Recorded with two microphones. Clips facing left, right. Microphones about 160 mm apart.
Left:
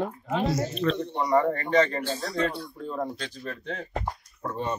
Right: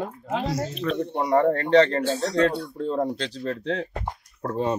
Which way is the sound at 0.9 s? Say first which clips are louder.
Right 5 dB; 55° right (ahead or behind).